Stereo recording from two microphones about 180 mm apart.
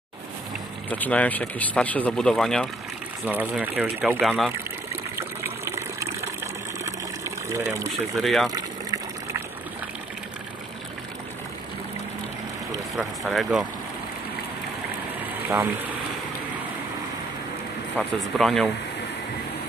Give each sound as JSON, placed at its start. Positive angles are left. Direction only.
{"t": 0.8, "sound": "speech", "side_deg": 10}
{"t": 3.3, "sound": "speech", "side_deg": -10}
{"t": 5.1, "sound": "water", "side_deg": -15}
{"t": 8.2, "sound": "speech", "side_deg": 0}
{"t": 8.5, "sound": "water", "side_deg": -20}
{"t": 12.9, "sound": "speech", "side_deg": 0}
{"t": 15.5, "sound": "speech", "side_deg": -10}
{"t": 17.9, "sound": "speech", "side_deg": 0}